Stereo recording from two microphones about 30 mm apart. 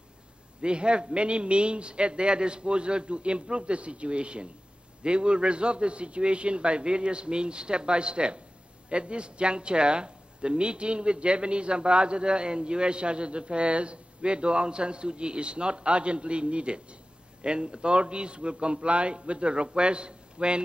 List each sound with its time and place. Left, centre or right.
0.6 s speech: right